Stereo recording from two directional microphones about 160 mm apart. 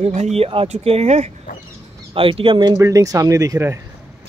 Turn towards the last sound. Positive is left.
turn(degrees=-20)  # may be behind; listen again after turning